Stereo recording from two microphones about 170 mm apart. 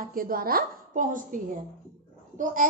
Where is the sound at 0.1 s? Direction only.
55° right (ahead or behind).